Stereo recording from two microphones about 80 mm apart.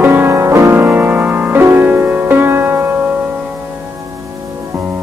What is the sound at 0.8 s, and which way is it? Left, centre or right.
Music, right.